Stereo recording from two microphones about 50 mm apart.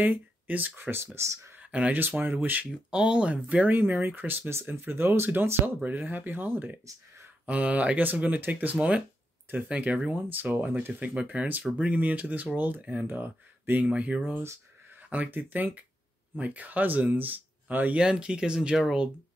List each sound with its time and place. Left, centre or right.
0.0 s speech: right
0.7 s speech: right
1.6 s a sound: right
2.0 s speech: right
2.9 s speech: centre
10.3 s speech: right
17.9 s speech: centre